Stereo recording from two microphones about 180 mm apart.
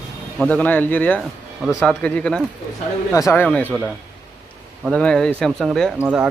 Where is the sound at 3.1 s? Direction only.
15° left (ahead or behind).